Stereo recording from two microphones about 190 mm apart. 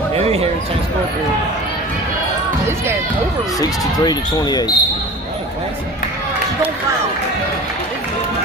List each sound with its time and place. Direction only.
0.2 s basketball bounce: 30° right (ahead or behind)
3.5 s speech: 20° left (ahead or behind)